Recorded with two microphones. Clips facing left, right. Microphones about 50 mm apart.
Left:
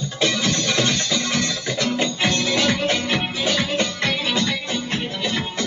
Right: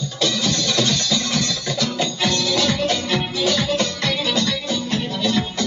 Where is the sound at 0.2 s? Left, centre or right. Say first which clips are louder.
Even; left.